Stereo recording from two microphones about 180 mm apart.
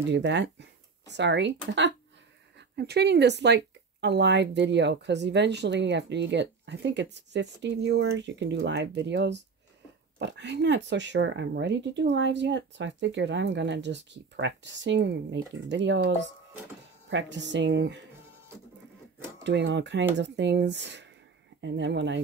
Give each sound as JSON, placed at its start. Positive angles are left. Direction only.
{"t": 0.1, "sound": "speech", "side_deg": -75}
{"t": 2.7, "sound": "speech", "side_deg": -65}
{"t": 19.4, "sound": "speech", "side_deg": -80}